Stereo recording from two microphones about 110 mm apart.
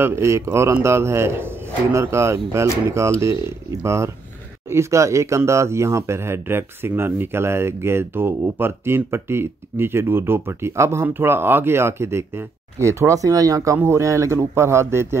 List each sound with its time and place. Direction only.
0.0 s speech: 25° right (ahead or behind)